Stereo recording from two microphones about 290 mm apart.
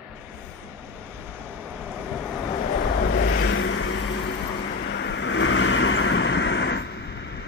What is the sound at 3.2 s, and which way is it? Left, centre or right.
Vehicle, left.